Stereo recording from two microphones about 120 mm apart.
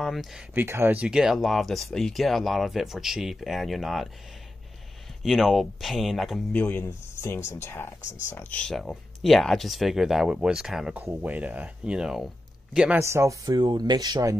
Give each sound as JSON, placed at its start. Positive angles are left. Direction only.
{"t": 0.0, "sound": "speech", "side_deg": 0}
{"t": 0.6, "sound": "speech", "side_deg": -20}
{"t": 0.9, "sound": "speech", "side_deg": -5}
{"t": 5.2, "sound": "speech", "side_deg": 0}
{"t": 6.5, "sound": "speech", "side_deg": 15}
{"t": 8.5, "sound": "speech", "side_deg": 5}
{"t": 11.0, "sound": "speech", "side_deg": -15}
{"t": 13.0, "sound": "speech", "side_deg": -25}
{"t": 13.6, "sound": "speech", "side_deg": -40}